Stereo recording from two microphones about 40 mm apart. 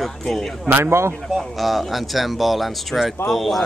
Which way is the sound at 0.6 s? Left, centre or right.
Right.